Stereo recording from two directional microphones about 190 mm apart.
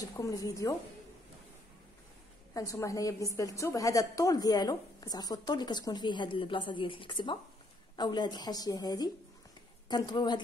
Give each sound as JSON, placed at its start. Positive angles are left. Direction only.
{"t": 0.0, "sound": "a woman's voice", "side_deg": 20}
{"t": 2.5, "sound": "a woman's voice", "side_deg": 15}